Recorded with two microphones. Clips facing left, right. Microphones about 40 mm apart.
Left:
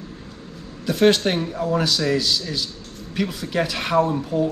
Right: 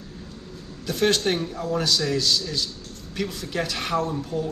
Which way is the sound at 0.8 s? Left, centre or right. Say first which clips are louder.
Left 5 dB; centre.